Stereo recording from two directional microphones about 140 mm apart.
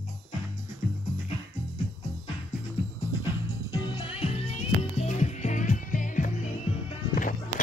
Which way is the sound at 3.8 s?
40° left (ahead or behind).